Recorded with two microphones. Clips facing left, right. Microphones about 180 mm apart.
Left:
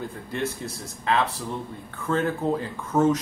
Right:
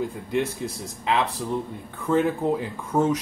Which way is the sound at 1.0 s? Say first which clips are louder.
Even; 15° right (ahead or behind).